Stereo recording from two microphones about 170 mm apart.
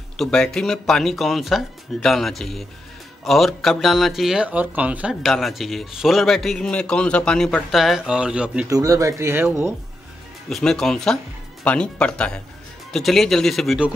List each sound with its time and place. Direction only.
0.2 s speech: 5° left (ahead or behind)
8.6 s speech: 20° right (ahead or behind)
10.5 s speech: centre (ahead or behind)